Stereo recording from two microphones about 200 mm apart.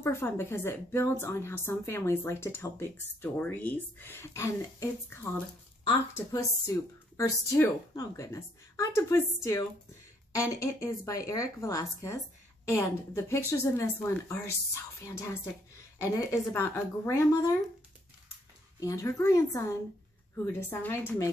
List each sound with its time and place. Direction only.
0.0 s a woman's voice: 10° left (ahead or behind)
18.8 s a woman's voice: 15° left (ahead or behind)